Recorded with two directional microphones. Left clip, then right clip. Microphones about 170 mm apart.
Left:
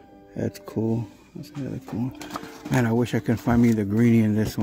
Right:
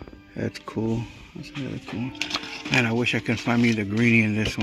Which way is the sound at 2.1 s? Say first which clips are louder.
Right 6 dB; 30° left (ahead or behind).